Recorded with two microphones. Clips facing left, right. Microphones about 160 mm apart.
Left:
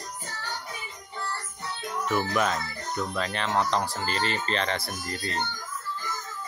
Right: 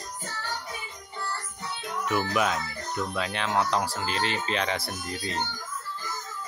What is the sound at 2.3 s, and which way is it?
Speech, centre (ahead or behind).